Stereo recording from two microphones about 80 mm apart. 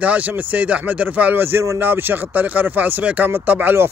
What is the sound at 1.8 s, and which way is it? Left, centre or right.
Speech, right.